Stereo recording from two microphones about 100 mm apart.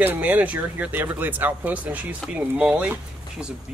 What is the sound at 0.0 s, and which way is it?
Speech, 20° right (ahead or behind).